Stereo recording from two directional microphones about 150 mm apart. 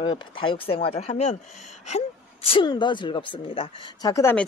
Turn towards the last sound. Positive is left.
turn(degrees=15)  # may be behind; listen again after turning